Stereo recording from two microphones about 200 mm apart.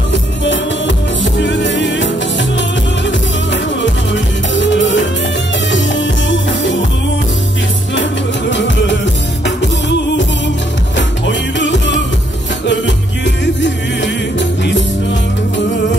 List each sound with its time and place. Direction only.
0.1 s music: 65° left (ahead or behind)
3.8 s music: 65° left (ahead or behind)
7.9 s music: 65° left (ahead or behind)